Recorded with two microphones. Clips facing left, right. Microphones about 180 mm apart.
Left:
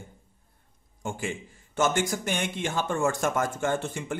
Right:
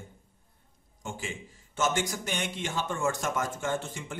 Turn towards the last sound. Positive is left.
turn(degrees=55)  # may be behind; listen again after turning